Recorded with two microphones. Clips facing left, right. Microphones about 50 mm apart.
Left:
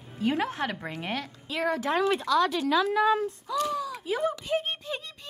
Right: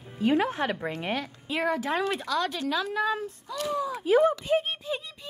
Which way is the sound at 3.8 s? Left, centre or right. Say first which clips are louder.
Right 3 dB; centre.